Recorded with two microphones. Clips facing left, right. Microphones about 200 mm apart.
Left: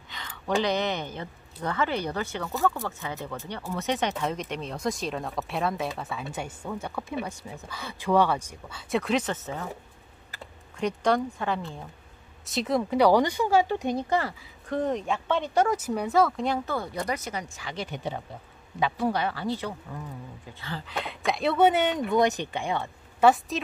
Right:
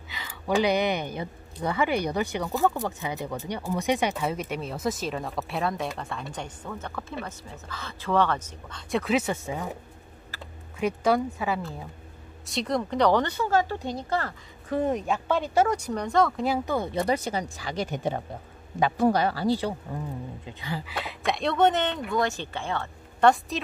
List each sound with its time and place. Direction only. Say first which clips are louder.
0.1 s speech: right 2 dB; 5° right (ahead or behind)
10.8 s speech: right 1 dB; 5° right (ahead or behind); by 14.3 s 15° left (ahead or behind)
14.7 s speech: right 2 dB; 5° right (ahead or behind)
16.7 s speech: right 5 dB; 25° right (ahead or behind)
20.4 s speech: right 1 dB; 15° right (ahead or behind); by 23.3 s 15° left (ahead or behind)
23.5 s speech: left 1 dB; centre (ahead or behind)